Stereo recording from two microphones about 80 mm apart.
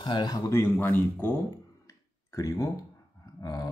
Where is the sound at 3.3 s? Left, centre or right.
Left.